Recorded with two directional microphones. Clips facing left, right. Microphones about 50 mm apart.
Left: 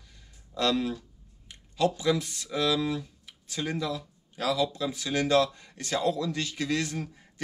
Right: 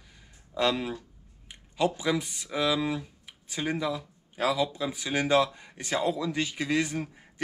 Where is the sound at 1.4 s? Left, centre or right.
Centre.